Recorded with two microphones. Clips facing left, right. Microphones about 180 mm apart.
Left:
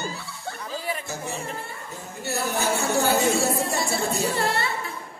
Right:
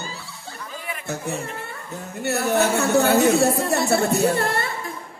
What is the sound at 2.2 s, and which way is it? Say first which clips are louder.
A woman's voice: right 7 dB; 65° right (ahead or behind).